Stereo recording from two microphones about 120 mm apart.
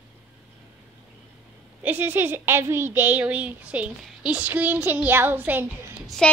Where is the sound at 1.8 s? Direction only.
15° right (ahead or behind).